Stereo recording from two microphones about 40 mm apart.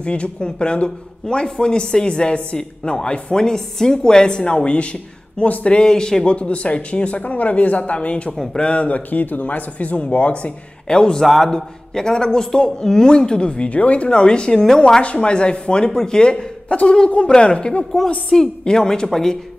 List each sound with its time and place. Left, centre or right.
0.0 s speech: left
6.3 s speech: left
11.2 s a man's voice: centre
11.5 s speech: centre
13.7 s speech: left
14.0 s speech: left